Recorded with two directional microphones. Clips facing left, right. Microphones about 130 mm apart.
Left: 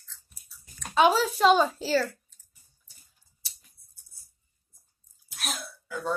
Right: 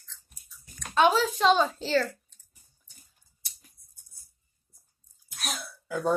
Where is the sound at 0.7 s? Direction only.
10° left (ahead or behind).